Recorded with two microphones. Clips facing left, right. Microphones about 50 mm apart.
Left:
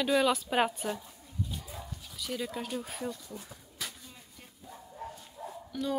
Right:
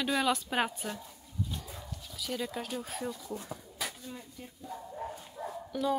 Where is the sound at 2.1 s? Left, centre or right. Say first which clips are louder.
Even; centre.